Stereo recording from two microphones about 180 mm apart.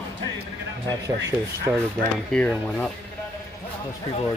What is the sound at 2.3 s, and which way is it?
Speech, 5° left (ahead or behind).